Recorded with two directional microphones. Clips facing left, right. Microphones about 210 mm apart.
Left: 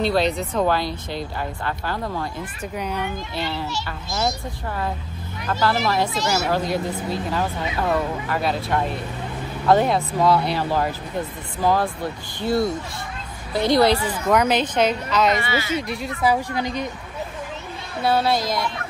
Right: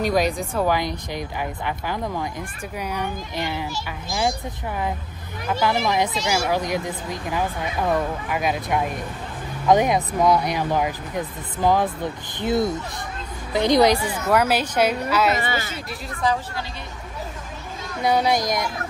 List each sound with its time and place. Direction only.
0.0 s speech: 10° right (ahead or behind)
5.5 s a woman's voice: 15° right (ahead or behind)
13.9 s speech: 10° right (ahead or behind)
15.3 s speech: 45° right (ahead or behind)
16.2 s a woman's voice: 10° left (ahead or behind)
18.0 s speech: 15° right (ahead or behind)